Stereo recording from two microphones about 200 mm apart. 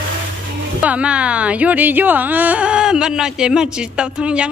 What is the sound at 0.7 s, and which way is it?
Speech, 5° right (ahead or behind).